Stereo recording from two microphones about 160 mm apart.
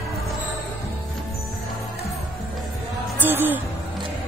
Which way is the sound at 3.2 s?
15° right (ahead or behind).